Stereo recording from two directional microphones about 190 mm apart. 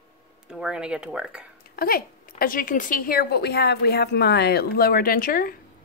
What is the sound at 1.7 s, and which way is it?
A woman's voice, 50° left (ahead or behind).